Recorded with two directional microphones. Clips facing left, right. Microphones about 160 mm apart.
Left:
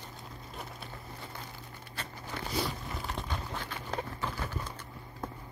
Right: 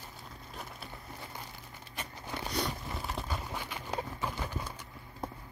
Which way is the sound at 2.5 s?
Centre (ahead or behind).